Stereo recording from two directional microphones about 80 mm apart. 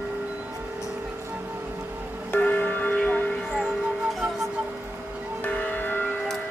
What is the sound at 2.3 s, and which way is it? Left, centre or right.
Music, left.